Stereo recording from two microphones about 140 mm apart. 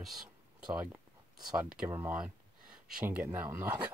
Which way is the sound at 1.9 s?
20° right (ahead or behind).